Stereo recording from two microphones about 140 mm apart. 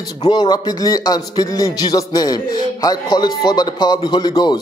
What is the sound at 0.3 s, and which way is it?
Speech, 30° left (ahead or behind).